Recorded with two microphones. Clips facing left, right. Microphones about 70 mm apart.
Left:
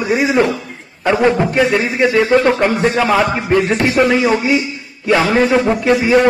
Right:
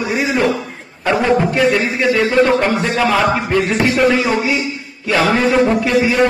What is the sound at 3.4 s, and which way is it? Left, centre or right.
Speech, left.